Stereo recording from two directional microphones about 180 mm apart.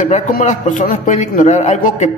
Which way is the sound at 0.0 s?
40° left (ahead or behind).